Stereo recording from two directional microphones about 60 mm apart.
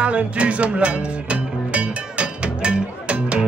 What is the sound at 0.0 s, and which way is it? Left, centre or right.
Music, right.